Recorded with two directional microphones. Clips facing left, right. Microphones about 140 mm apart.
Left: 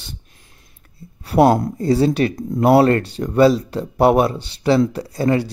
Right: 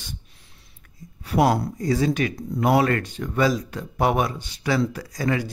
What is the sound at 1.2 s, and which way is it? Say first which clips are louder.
Speech: left 6 dB; 30° left (ahead or behind).